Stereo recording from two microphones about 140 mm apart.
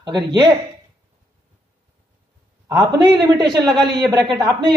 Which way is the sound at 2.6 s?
30° right (ahead or behind).